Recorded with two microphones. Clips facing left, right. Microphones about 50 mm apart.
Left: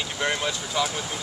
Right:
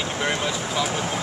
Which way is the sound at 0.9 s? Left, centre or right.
Right.